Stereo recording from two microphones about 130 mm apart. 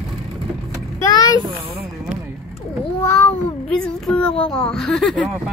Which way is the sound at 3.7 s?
5° left (ahead or behind).